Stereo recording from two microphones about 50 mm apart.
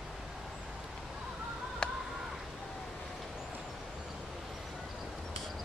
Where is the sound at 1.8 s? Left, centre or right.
Centre.